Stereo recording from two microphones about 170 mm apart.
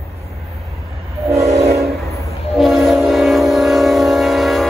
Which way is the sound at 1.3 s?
15° right (ahead or behind).